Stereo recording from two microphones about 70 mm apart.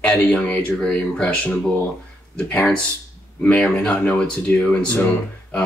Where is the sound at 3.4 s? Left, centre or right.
Centre.